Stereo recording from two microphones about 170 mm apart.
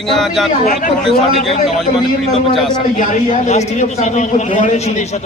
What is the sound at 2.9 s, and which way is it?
A man's voice, 45° left (ahead or behind).